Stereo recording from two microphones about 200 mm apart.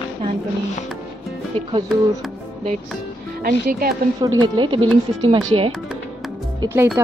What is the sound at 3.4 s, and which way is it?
Speech, 50° right (ahead or behind).